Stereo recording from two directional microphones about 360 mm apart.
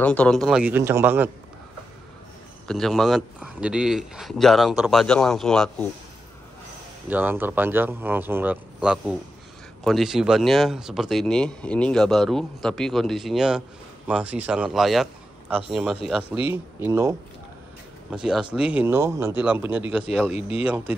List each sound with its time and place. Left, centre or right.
0.0 s speech: centre
2.7 s speech: centre
7.1 s speech: centre
18.1 s speech: centre
20.3 s speech: centre
20.6 s speech: centre